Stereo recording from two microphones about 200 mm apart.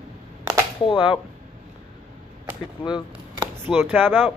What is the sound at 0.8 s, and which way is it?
Speech, 25° left (ahead or behind).